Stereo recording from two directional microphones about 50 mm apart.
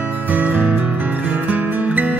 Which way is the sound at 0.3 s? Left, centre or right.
Right.